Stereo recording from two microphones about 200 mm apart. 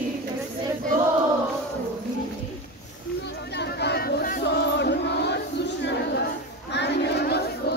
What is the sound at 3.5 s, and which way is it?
Crowd, 55° left (ahead or behind).